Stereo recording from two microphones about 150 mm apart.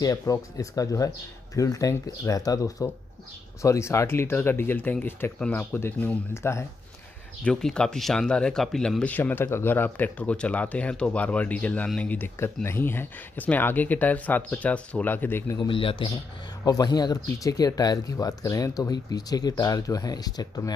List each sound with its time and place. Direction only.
0.0 s speech: 25° left (ahead or behind)
7.4 s speech: 5° left (ahead or behind)
15.7 s speech: 35° left (ahead or behind)
16.6 s speech: 25° left (ahead or behind)